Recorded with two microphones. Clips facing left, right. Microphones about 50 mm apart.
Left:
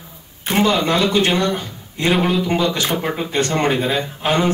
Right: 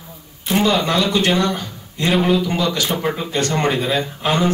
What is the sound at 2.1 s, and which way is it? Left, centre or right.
Speech, centre.